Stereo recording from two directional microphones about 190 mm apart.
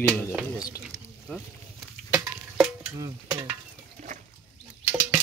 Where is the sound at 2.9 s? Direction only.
20° right (ahead or behind).